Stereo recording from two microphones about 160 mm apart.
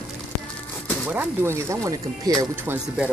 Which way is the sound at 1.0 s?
15° right (ahead or behind).